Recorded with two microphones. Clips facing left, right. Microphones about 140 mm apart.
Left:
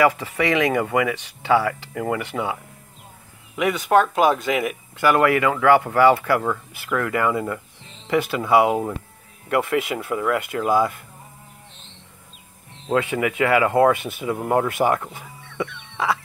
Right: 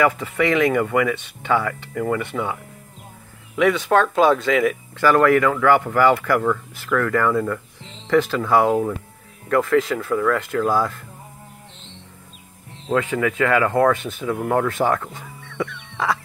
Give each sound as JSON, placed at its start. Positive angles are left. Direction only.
{"t": 0.5, "sound": "speech", "side_deg": 15}
{"t": 3.5, "sound": "speech", "side_deg": 0}
{"t": 13.0, "sound": "speech", "side_deg": 15}
{"t": 15.5, "sound": "cough", "side_deg": 25}